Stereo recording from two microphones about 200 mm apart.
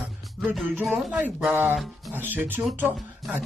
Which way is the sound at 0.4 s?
5° right (ahead or behind).